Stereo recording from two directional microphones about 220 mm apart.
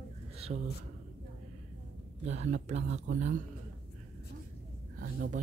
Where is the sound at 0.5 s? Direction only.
40° right (ahead or behind).